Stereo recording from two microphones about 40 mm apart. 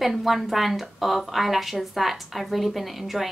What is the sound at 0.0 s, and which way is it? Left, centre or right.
A woman's voice, centre.